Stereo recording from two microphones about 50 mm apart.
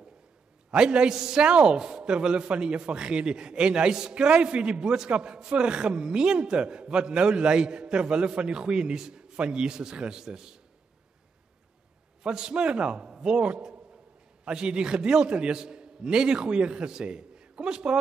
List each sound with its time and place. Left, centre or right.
0.7 s a man's voice: centre
12.2 s a man's voice: centre